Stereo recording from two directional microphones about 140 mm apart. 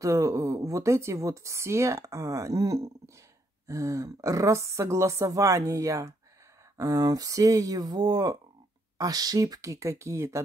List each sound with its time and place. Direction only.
0.0 s a woman's voice: 25° right (ahead or behind)